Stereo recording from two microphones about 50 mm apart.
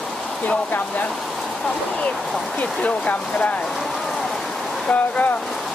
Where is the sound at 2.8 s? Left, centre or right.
Left.